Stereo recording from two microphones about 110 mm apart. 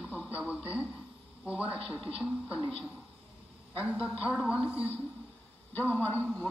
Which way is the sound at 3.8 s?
10° right (ahead or behind).